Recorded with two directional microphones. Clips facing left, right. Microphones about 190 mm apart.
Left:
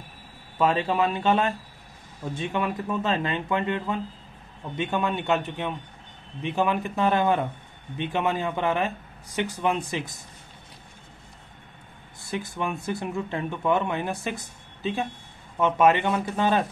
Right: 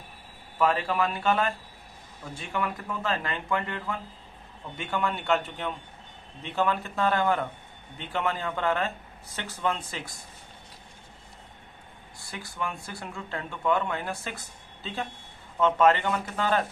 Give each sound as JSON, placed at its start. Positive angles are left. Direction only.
{"t": 0.6, "sound": "speech", "side_deg": 20}
{"t": 12.2, "sound": "speech", "side_deg": 20}